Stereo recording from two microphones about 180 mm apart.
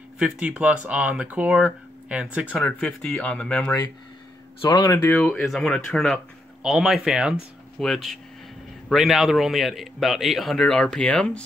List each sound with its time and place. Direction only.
0.2 s speech: 5° right (ahead or behind)
2.6 s a man's voice: 5° left (ahead or behind)